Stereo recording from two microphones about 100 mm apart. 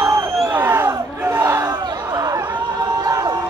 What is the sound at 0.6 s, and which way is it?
Battle cry, 25° right (ahead or behind).